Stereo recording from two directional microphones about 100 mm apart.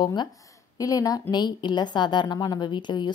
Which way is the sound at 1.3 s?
45° left (ahead or behind).